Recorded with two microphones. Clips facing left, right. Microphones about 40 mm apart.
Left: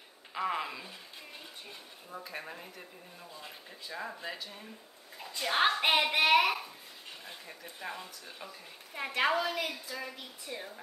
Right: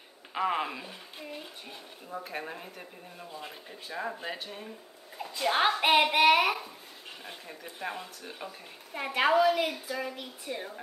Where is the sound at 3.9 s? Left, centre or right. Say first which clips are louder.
Right 4 dB; right.